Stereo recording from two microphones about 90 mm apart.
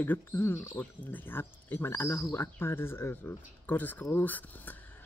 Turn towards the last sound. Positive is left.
turn(degrees=20)  # may be behind; listen again after turning